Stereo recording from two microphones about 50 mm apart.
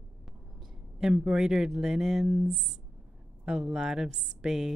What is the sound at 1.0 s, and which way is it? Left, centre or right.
Speech, centre.